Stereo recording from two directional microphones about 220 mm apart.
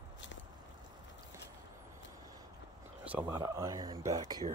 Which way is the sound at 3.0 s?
5° right (ahead or behind).